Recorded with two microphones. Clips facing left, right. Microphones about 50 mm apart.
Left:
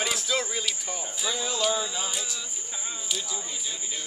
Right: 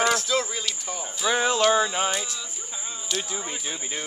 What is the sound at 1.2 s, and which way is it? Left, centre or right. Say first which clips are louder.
Speech: right 8 dB; right.